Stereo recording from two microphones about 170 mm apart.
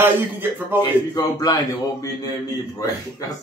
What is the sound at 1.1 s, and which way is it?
A man's voice, 20° left (ahead or behind).